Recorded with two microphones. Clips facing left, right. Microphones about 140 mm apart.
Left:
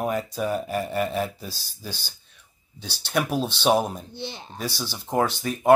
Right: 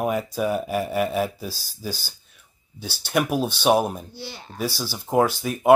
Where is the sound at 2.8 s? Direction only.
5° right (ahead or behind).